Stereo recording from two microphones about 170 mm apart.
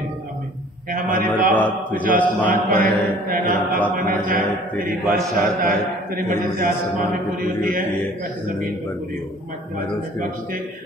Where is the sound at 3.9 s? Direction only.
55° right (ahead or behind).